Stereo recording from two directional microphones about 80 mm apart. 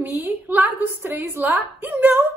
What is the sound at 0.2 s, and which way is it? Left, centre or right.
A woman's voice, right.